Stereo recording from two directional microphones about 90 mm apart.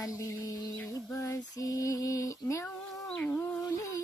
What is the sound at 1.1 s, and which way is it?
Female singing, 35° left (ahead or behind).